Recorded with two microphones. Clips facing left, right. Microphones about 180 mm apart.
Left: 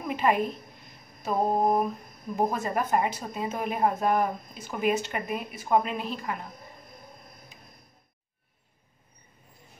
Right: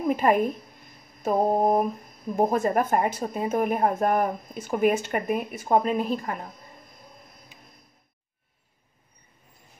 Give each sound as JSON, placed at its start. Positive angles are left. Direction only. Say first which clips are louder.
{"t": 0.1, "sound": "a woman's voice", "louder": "right 3 dB", "side_deg": -45}